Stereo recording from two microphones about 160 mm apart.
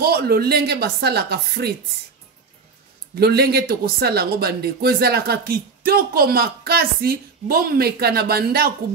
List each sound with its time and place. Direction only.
0.0 s speech: 75° right (ahead or behind)
3.2 s speech: 80° right